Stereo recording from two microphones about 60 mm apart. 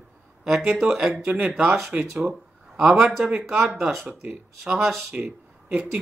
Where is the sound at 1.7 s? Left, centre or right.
Centre.